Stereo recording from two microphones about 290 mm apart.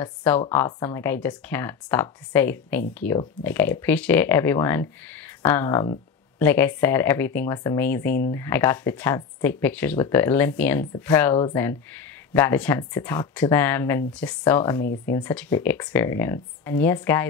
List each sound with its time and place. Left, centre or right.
0.0 s speech: centre